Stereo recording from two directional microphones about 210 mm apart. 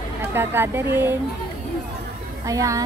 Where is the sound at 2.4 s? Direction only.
15° right (ahead or behind).